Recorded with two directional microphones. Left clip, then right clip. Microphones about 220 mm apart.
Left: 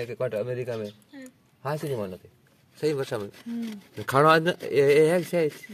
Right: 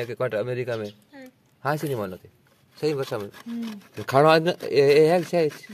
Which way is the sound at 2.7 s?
10° right (ahead or behind).